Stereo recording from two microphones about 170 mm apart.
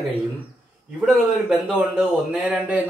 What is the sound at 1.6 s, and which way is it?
A man's voice, 5° right (ahead or behind).